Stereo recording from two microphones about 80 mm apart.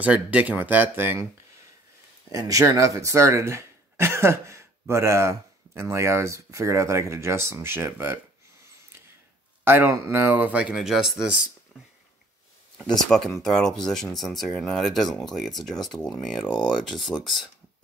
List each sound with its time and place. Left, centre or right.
0.0 s speech: centre
2.3 s speech: right
9.7 s speech: right; by 11.3 s centre
12.7 s speech: centre